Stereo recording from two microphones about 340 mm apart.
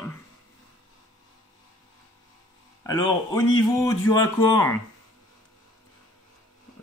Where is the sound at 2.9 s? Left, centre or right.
Centre.